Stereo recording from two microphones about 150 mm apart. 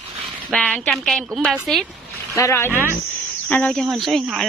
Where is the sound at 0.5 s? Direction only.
10° left (ahead or behind).